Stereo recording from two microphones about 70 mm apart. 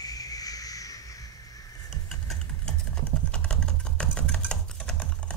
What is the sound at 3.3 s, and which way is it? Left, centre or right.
Typing, centre.